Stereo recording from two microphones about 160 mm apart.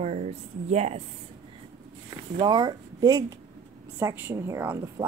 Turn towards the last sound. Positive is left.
turn(degrees=-15)  # may be behind; listen again after turning